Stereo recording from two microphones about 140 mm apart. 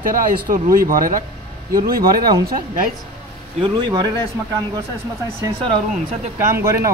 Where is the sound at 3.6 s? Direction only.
30° right (ahead or behind).